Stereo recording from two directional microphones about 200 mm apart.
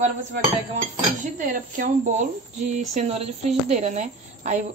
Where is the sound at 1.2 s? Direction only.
40° right (ahead or behind).